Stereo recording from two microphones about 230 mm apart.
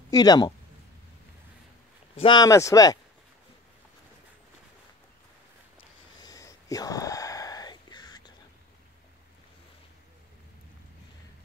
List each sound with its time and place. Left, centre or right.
0.1 s speech: centre
2.1 s speech: centre
6.2 s a sound: centre